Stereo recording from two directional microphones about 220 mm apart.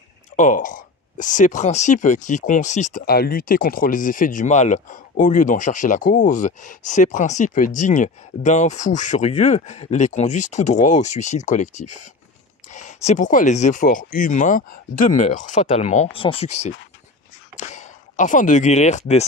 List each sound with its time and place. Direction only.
0.4 s speech: 35° left (ahead or behind)